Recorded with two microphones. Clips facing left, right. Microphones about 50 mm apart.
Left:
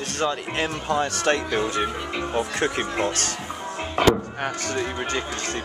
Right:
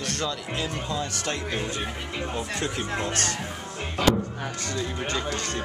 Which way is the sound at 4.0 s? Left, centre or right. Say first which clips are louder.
Left 4 dB; left.